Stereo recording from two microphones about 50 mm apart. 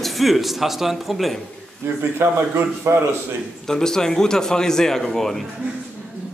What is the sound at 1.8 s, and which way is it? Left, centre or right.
A man's voice, right.